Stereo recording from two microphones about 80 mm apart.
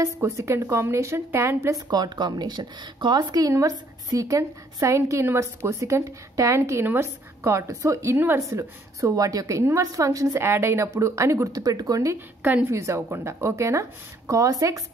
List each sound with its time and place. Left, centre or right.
0.0 s a woman's voice: right
1.9 s a woman's voice: right
12.4 s a woman's voice: right
12.7 s a woman's voice: right